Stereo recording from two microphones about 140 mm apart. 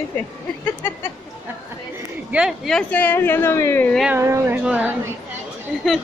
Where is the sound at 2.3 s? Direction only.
5° right (ahead or behind); by 4.0 s 15° left (ahead or behind).